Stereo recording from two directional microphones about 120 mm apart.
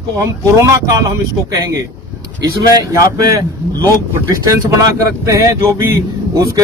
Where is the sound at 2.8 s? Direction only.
30° right (ahead or behind).